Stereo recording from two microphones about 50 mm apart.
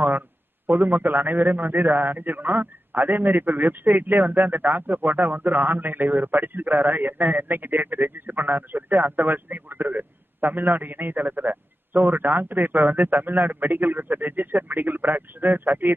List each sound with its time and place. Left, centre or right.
0.7 s a man's voice: right